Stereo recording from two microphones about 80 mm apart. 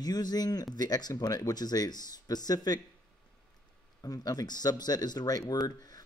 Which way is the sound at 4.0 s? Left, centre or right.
Left.